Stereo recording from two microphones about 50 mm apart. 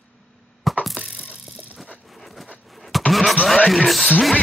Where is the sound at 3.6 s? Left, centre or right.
Centre.